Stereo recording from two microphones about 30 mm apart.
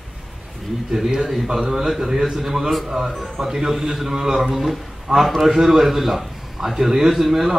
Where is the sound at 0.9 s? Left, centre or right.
Centre.